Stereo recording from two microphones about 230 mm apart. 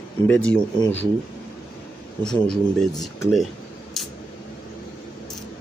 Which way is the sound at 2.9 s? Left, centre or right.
Centre.